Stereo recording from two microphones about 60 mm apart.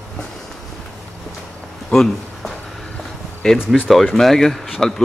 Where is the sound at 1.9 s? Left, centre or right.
Centre.